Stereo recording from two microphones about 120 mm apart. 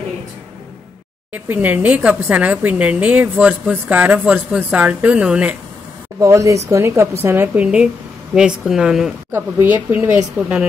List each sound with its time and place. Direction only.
1.3 s a woman's voice: 15° right (ahead or behind)
6.1 s a woman's voice: 25° right (ahead or behind); by 9.1 s 5° right (ahead or behind)
9.3 s a woman's voice: 15° right (ahead or behind)